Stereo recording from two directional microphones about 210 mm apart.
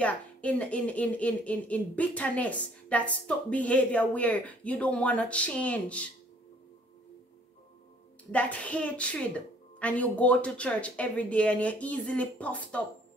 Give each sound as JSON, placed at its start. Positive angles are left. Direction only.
{"t": 0.0, "sound": "a woman's voice", "side_deg": 5}
{"t": 8.3, "sound": "a woman's voice", "side_deg": 5}